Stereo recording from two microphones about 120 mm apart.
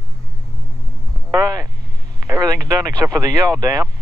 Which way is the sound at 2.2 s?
30° right (ahead or behind).